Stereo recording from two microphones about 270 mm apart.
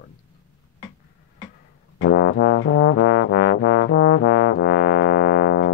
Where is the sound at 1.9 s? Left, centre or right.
Left.